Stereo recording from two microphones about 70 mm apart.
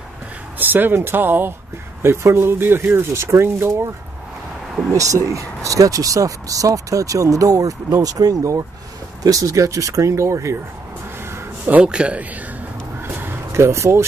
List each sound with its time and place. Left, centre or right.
0.6 s speech: right
4.9 s speech: right
11.2 s a sound: right
11.7 s a man's voice: centre
13.1 s a sound: right
13.5 s speech: right